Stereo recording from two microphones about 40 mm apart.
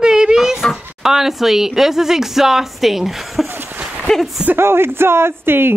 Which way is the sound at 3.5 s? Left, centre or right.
Right.